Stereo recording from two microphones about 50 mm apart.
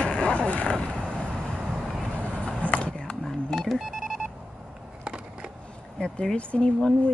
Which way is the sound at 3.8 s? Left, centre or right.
Centre.